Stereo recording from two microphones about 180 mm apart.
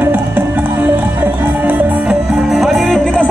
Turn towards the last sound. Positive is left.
turn(degrees=5)  # may be behind; listen again after turning